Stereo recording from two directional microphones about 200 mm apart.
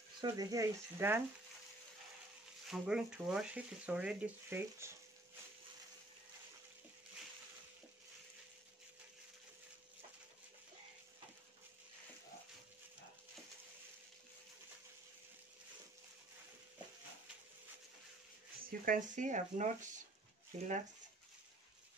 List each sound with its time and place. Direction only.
0.2 s speech: 20° right (ahead or behind)
2.7 s speech: 5° right (ahead or behind)
18.7 s speech: 40° right (ahead or behind)